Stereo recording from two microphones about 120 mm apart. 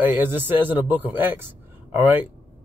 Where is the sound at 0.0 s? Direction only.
15° right (ahead or behind).